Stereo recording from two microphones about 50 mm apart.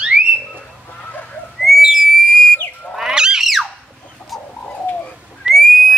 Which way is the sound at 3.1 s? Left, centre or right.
Centre.